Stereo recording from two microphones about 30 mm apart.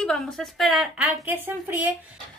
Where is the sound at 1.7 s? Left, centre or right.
Right.